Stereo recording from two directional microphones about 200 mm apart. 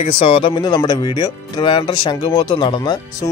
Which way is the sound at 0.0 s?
25° left (ahead or behind).